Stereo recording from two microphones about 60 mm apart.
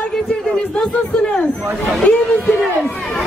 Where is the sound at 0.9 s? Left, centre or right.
Centre.